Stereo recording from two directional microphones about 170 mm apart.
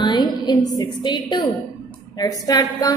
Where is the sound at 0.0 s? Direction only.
25° left (ahead or behind).